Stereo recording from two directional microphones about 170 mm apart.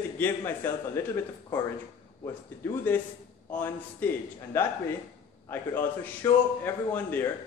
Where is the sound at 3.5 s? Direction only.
10° left (ahead or behind).